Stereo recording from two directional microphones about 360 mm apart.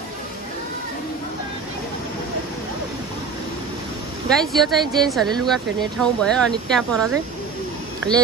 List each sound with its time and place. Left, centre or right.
4.4 s speech: centre